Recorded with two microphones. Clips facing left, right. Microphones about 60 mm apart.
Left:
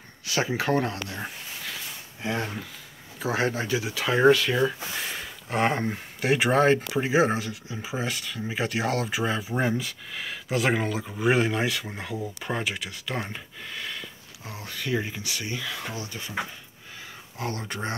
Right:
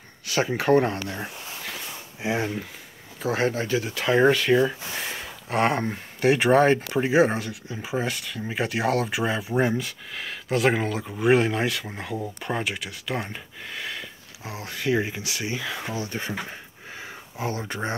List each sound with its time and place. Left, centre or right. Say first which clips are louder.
0.3 s speech: right 2 dB; centre
0.7 s speech: right 5 dB; centre
3.2 s speech: right 2 dB; centre
16.0 s speech: right 6 dB; right
17.4 s speech: right 3 dB; centre